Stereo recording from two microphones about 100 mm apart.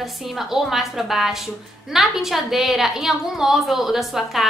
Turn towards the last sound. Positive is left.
turn(degrees=0)  # may be behind; listen again after turning